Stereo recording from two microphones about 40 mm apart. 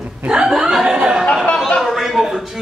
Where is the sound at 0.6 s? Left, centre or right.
Centre.